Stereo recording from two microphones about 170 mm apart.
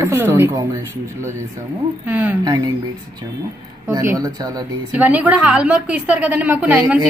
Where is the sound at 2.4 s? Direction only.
20° right (ahead or behind).